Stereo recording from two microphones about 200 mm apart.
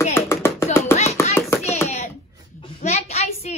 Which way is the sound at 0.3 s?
10° left (ahead or behind).